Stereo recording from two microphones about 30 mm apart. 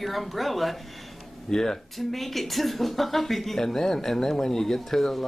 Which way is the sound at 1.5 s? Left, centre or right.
Centre.